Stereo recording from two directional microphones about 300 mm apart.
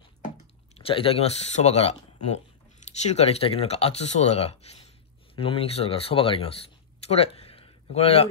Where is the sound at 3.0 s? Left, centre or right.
Left.